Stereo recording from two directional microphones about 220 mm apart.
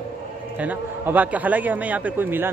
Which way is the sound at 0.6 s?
5° right (ahead or behind).